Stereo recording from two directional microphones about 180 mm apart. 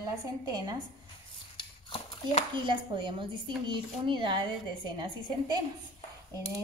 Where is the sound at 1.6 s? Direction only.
30° left (ahead or behind).